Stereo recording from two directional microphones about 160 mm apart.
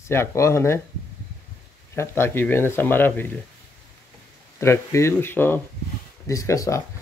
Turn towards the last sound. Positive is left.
turn(degrees=20)  # may be behind; listen again after turning